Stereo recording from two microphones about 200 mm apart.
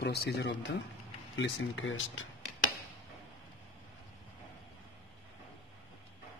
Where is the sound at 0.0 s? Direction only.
55° left (ahead or behind).